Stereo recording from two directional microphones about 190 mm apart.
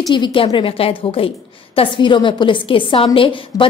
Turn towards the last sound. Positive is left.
turn(degrees=25)  # may be behind; listen again after turning